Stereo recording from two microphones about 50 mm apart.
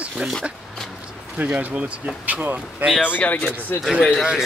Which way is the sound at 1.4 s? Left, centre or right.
Right.